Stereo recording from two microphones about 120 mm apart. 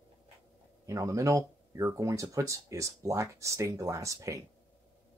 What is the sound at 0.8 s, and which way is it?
Speech, 25° right (ahead or behind).